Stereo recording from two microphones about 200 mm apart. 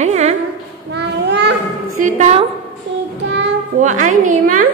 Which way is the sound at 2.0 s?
35° right (ahead or behind).